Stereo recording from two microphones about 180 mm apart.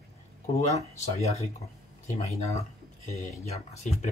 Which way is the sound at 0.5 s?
35° left (ahead or behind).